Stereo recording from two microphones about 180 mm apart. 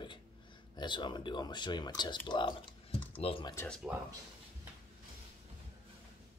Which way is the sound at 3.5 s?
10° left (ahead or behind).